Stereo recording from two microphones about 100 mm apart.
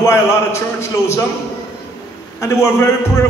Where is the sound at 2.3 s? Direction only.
30° left (ahead or behind).